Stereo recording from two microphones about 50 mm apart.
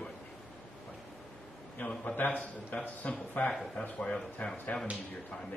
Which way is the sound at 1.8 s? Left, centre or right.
Left.